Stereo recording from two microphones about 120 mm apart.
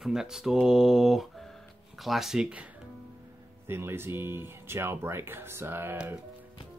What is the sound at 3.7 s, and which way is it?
Speech, 20° right (ahead or behind).